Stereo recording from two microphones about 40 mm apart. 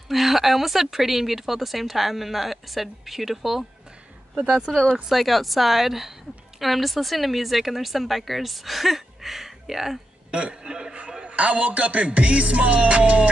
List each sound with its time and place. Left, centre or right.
0.1 s speech: centre
5.0 s speech: centre
10.3 s speech: right
11.0 s music: right